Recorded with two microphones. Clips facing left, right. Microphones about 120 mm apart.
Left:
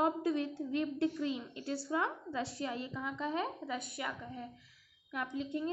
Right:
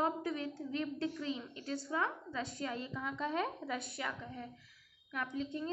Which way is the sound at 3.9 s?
20° left (ahead or behind).